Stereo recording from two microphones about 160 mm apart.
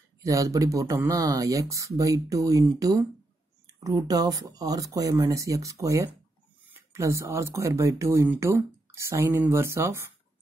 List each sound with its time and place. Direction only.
0.2 s speech: 20° right (ahead or behind)